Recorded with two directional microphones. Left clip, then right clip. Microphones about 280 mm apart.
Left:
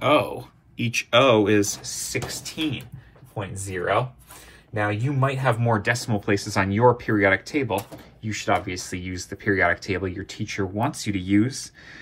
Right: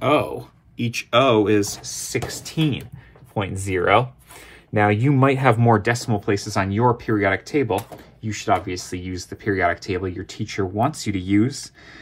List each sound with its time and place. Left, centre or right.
0.1 s speech: right